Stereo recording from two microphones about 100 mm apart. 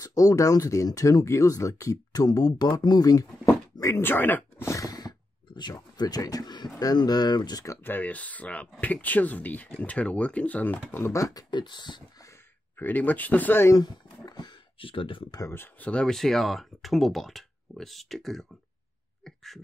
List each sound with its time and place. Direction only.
0.0 s speech: 35° left (ahead or behind)
4.0 s speech: 20° left (ahead or behind)
4.6 s a sound: 35° left (ahead or behind)
6.8 s speech: 40° left (ahead or behind)
7.6 s speech: 25° left (ahead or behind)
11.5 s speech: 50° left (ahead or behind)
12.7 s speech: 20° left (ahead or behind)
13.7 s speech: 45° left (ahead or behind); by 15.2 s 60° left (ahead or behind)
15.5 s speech: 20° left (ahead or behind); by 18.5 s centre (ahead or behind)
19.2 s a sound: 5° left (ahead or behind)